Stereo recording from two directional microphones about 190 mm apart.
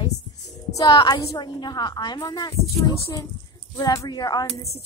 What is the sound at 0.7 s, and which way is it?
A woman's voice, 20° left (ahead or behind).